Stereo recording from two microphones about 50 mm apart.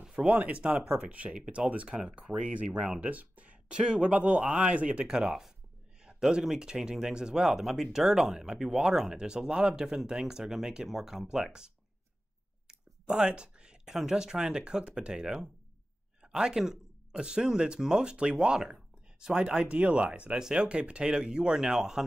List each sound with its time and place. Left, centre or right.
0.0 s speech: centre
3.0 s speech: right; by 22.0 s centre